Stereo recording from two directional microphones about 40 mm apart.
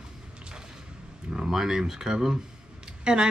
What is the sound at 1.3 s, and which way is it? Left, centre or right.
Speech, centre.